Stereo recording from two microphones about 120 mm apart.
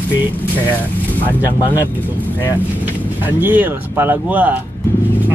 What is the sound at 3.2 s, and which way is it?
A man's voice, 15° right (ahead or behind).